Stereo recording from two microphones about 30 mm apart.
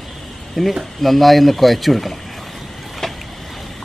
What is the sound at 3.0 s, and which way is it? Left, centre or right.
Boat, centre.